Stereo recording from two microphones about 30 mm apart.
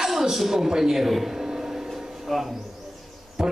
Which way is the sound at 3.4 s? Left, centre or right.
Right.